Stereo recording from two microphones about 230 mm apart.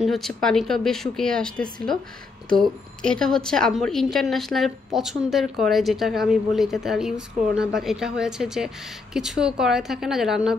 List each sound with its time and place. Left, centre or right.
0.0 s a woman's voice: centre